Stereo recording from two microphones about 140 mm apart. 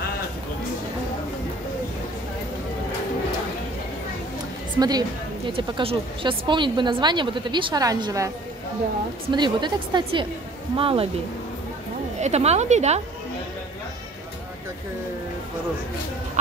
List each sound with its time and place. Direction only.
4.7 s a woman's voice: 30° right (ahead or behind)
5.5 s speech: 40° right (ahead or behind); by 8.3 s 25° right (ahead or behind)
9.3 s speech: 30° right (ahead or behind)
12.2 s a woman's voice: 50° right (ahead or behind)